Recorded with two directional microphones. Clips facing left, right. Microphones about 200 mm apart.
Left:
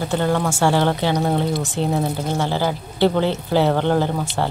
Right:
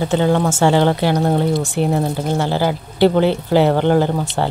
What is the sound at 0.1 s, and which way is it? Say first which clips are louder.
Speech: right 4 dB; 20° right (ahead or behind).